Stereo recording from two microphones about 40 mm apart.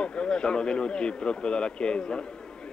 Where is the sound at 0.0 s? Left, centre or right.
Left.